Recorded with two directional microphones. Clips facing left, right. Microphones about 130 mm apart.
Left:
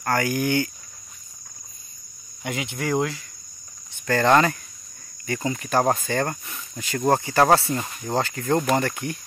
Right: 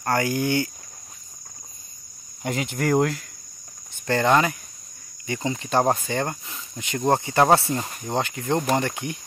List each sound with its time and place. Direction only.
0.0 s speech: 25° right (ahead or behind)
2.4 s speech: 45° right (ahead or behind)
4.2 s speech: 10° right (ahead or behind)
5.2 s speech: 20° right (ahead or behind)